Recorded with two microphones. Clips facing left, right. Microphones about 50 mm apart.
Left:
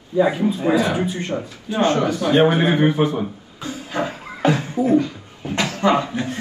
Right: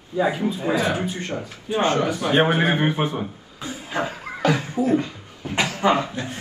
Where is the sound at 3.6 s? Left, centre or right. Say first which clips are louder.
Left 2 dB; right.